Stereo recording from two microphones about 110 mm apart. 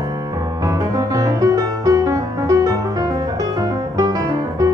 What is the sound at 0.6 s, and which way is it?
Music, 30° right (ahead or behind).